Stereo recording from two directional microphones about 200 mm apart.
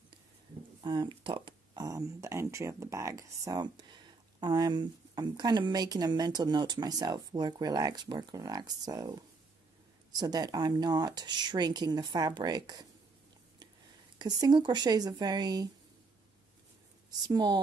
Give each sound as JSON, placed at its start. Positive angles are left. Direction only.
{"t": 0.8, "sound": "speech", "side_deg": -20}
{"t": 14.1, "sound": "speech", "side_deg": -20}
{"t": 17.3, "sound": "speech", "side_deg": -20}